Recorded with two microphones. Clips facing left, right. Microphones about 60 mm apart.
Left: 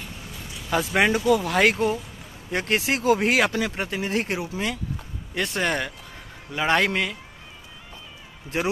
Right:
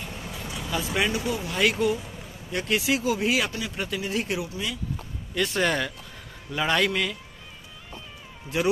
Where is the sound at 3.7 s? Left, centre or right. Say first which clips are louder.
Left 3 dB; left.